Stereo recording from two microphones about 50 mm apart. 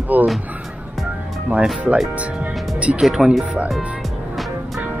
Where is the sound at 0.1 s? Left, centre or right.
Right.